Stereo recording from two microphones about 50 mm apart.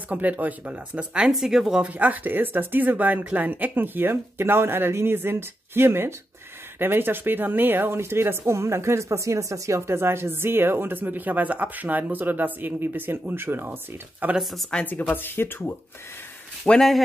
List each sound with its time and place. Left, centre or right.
0.1 s speech: right
1.3 s speech: centre
1.8 s speech: right
14.4 s speech: centre
14.9 s speech: left
16.6 s speech: left